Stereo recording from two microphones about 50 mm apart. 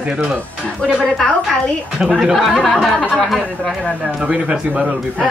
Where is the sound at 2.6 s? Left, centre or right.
Centre.